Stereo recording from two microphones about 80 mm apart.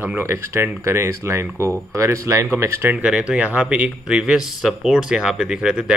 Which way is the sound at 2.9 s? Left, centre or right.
Centre.